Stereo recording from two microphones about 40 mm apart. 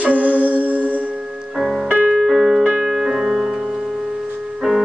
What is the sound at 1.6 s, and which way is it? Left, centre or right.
Music, centre.